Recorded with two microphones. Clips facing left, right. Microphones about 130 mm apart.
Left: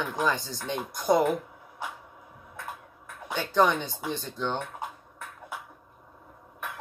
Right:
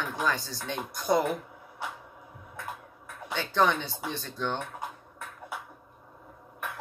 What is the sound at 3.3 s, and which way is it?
Speech, 10° left (ahead or behind).